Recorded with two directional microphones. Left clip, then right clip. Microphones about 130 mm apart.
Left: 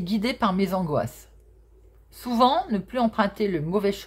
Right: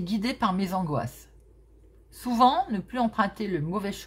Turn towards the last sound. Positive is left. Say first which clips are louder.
# left 6 dB
turn(degrees=20)  # may be behind; listen again after turning